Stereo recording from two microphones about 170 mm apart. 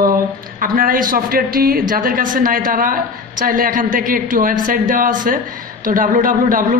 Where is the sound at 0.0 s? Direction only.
55° right (ahead or behind).